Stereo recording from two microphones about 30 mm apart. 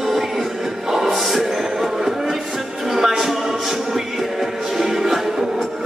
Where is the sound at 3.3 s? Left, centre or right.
Centre.